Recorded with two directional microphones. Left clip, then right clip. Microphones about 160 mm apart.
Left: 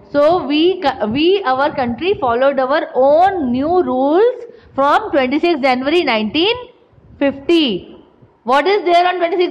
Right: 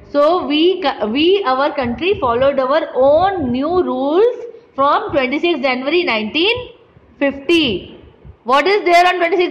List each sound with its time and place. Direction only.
0.1 s a woman's voice: 15° left (ahead or behind)